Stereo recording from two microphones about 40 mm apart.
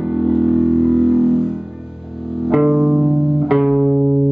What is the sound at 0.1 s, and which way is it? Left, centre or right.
Music, centre.